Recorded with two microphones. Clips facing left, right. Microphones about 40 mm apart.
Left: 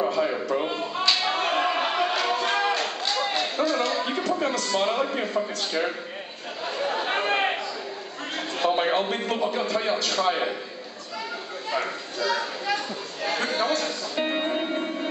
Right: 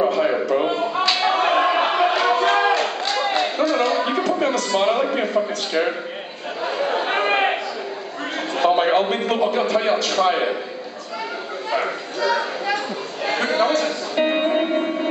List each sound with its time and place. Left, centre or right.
0.2 s a sound: right
4.6 s speech: right
6.6 s chatter: centre
8.5 s a sound: right
9.3 s speech: right
11.7 s chatter: centre